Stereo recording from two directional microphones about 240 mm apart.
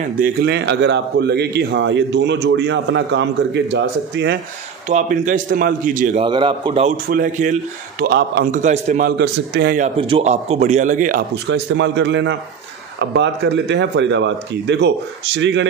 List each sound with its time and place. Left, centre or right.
0.2 s a man's voice: right
4.8 s a man's voice: right
6.2 s a man's voice: centre
7.1 s a man's voice: right
8.0 s a man's voice: right
8.5 s a man's voice: right
9.9 s a man's voice: right